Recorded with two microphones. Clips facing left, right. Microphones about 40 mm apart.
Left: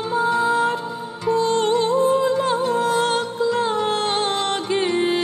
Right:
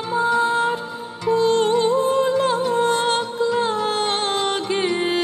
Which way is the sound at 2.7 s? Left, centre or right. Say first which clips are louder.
Even; centre.